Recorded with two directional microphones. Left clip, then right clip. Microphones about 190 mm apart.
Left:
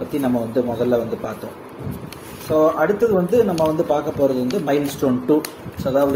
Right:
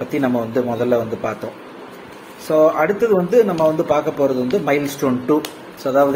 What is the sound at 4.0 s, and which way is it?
Speech, 25° right (ahead or behind).